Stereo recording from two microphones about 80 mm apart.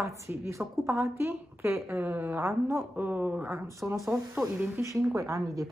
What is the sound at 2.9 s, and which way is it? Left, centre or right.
Speech, right.